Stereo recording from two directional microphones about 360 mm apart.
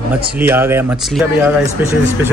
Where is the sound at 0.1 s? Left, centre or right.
Centre.